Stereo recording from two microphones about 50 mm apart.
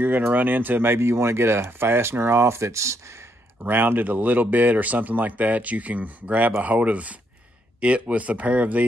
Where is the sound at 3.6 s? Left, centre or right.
Right.